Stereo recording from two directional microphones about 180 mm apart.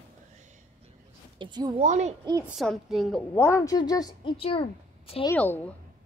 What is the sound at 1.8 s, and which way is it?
Speech, 40° right (ahead or behind).